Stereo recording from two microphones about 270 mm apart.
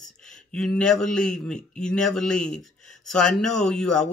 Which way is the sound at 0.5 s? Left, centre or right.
Centre.